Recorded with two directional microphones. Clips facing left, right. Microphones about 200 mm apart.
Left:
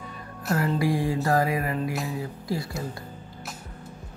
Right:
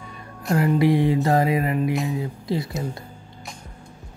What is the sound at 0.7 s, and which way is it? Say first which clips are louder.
Speech: right 8 dB; 20° right (ahead or behind).